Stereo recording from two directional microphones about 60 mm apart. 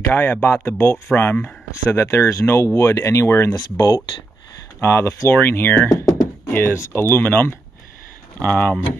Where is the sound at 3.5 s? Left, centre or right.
Left.